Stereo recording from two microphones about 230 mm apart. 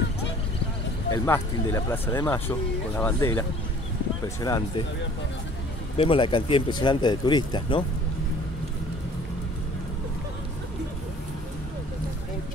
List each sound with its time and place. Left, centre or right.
1.1 s speech: centre
5.9 s speech: left